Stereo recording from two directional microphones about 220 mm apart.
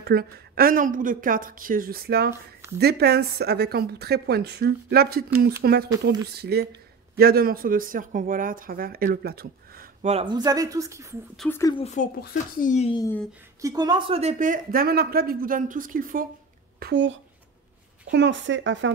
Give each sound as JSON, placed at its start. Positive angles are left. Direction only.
{"t": 0.0, "sound": "a woman's voice", "side_deg": -45}
{"t": 10.0, "sound": "speech", "side_deg": -25}
{"t": 11.3, "sound": "speech", "side_deg": 10}
{"t": 11.8, "sound": "speech", "side_deg": 35}
{"t": 12.9, "sound": "speech", "side_deg": 15}
{"t": 13.6, "sound": "speech", "side_deg": -15}
{"t": 16.8, "sound": "a woman's voice", "side_deg": -55}